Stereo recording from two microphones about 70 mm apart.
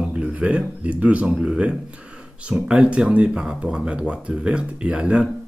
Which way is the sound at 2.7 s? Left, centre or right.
Centre.